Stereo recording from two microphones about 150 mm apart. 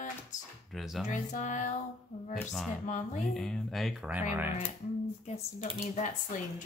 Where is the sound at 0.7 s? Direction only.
Centre (ahead or behind).